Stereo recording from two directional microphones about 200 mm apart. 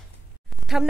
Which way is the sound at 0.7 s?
Centre (ahead or behind).